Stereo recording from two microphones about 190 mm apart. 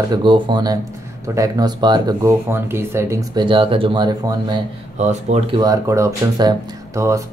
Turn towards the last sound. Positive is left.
turn(degrees=-15)  # may be behind; listen again after turning